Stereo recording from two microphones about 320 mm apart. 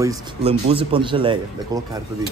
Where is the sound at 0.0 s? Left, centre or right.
Centre.